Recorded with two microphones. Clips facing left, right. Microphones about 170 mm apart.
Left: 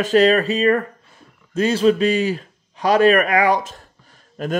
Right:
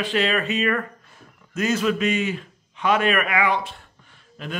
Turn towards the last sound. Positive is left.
turn(degrees=45)  # may be behind; listen again after turning